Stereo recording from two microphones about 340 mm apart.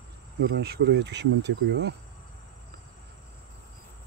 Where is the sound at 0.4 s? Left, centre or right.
Right.